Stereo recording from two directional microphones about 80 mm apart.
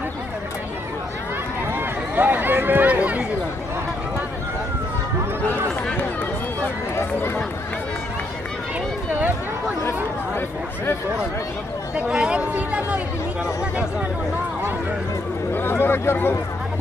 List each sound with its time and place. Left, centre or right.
1.7 s run: right
12.0 s speech: centre
15.5 s speech: left